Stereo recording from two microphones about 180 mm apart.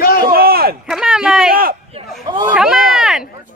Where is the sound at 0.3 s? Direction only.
55° right (ahead or behind).